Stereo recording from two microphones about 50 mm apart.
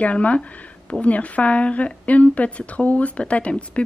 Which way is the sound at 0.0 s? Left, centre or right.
Left.